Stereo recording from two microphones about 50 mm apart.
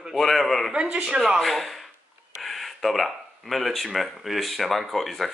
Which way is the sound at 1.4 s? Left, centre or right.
Centre.